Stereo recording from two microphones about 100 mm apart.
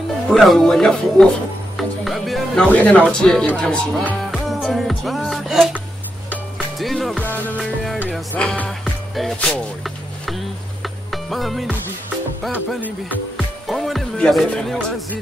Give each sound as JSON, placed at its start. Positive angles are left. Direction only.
{"t": 0.3, "sound": "speech", "side_deg": 0}
{"t": 4.3, "sound": "music", "side_deg": 0}
{"t": 6.8, "sound": "speech", "side_deg": 0}
{"t": 7.2, "sound": "speech", "side_deg": 20}
{"t": 8.4, "sound": "speech", "side_deg": 10}
{"t": 9.8, "sound": "music", "side_deg": 0}
{"t": 13.7, "sound": "music", "side_deg": 0}
{"t": 14.5, "sound": "speech", "side_deg": 10}